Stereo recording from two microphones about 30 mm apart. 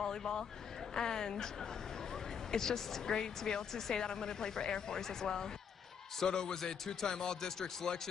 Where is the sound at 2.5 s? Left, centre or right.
Centre.